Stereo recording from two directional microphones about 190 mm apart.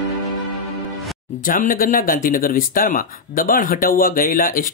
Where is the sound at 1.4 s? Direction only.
45° left (ahead or behind).